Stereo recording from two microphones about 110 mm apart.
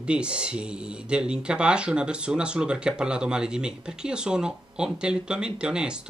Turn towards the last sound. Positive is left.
turn(degrees=-10)  # may be behind; listen again after turning